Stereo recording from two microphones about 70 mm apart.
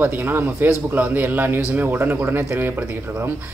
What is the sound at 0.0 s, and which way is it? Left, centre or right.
A man's voice, right.